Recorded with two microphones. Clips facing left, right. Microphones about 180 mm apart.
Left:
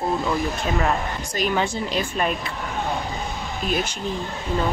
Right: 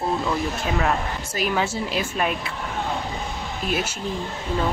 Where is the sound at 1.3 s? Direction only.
5° right (ahead or behind).